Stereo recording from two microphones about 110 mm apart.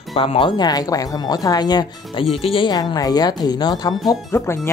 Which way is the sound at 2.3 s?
55° left (ahead or behind).